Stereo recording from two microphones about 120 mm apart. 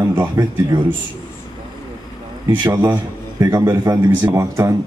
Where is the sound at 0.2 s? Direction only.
35° right (ahead or behind).